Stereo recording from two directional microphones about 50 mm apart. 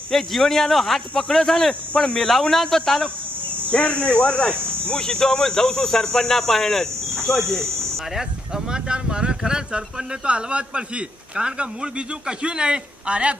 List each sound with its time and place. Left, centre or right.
0.1 s speech: centre
3.7 s speech: left; by 7.6 s centre
8.7 s a man's voice: centre